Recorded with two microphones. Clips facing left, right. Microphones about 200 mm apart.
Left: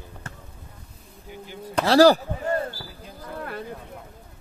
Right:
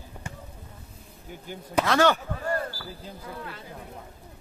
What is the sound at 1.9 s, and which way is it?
Bleat, 35° left (ahead or behind).